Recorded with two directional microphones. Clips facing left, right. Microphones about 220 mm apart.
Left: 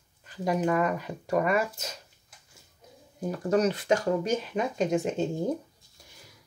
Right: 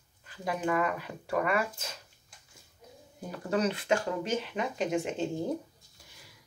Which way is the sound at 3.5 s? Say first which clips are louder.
Left 4 dB; 40° left (ahead or behind).